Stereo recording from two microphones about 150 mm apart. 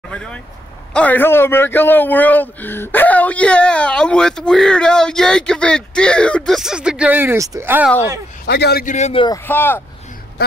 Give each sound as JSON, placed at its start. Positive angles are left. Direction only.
{"t": 0.1, "sound": "vehicle", "side_deg": 5}
{"t": 0.9, "sound": "a man's voice", "side_deg": 10}
{"t": 8.5, "sound": "a man's voice", "side_deg": 90}
{"t": 8.9, "sound": "a man's voice", "side_deg": 50}
{"t": 9.5, "sound": "speech", "side_deg": 15}